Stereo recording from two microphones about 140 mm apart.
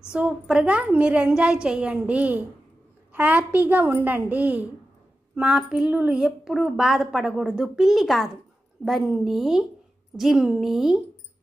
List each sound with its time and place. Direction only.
0.1 s a woman's voice: 5° right (ahead or behind)